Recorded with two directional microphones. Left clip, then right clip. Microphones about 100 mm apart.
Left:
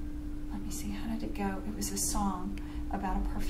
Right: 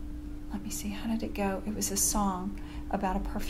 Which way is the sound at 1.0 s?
35° right (ahead or behind).